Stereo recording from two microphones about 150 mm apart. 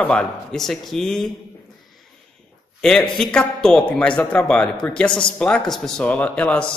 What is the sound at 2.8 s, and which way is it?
Speech, centre (ahead or behind).